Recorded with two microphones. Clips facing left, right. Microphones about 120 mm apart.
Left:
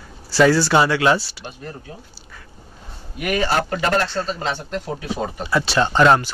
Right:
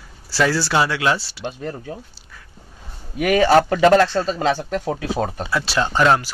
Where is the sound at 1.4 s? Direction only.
90° right.